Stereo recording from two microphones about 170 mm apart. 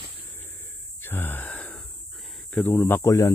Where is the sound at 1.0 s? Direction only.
10° left (ahead or behind).